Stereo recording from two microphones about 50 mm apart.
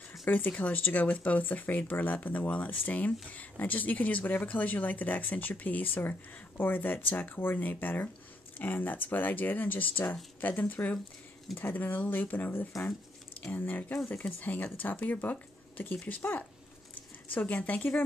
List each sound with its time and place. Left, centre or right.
0.3 s speech: left